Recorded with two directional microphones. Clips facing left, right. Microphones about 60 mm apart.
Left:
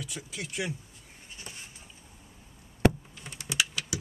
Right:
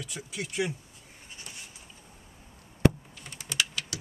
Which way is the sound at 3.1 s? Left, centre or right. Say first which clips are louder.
Left 1 dB; centre.